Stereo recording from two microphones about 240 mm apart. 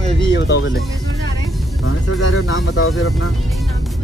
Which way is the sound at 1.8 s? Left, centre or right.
Left.